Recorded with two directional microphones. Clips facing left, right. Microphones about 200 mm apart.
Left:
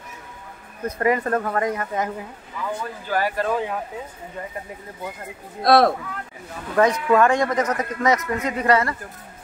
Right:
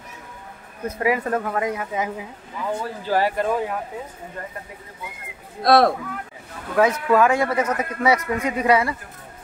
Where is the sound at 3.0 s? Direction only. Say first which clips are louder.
Right 2 dB; 25° right (ahead or behind).